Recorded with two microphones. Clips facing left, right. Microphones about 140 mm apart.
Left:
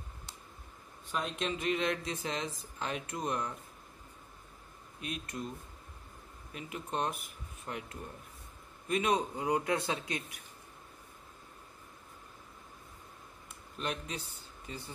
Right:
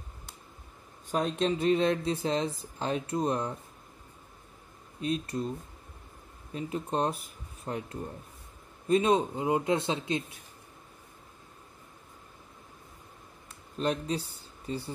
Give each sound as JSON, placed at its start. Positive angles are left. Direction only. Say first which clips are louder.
{"t": 1.1, "sound": "speech", "louder": "right 7 dB", "side_deg": -35}
{"t": 5.0, "sound": "speech", "louder": "right 9 dB", "side_deg": -30}
{"t": 6.5, "sound": "speech", "louder": "right 6 dB", "side_deg": -30}
{"t": 13.7, "sound": "speech", "louder": "right 8 dB", "side_deg": -35}